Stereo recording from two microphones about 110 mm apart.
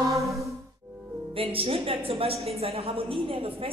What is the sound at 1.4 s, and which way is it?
A man's voice, 60° right (ahead or behind).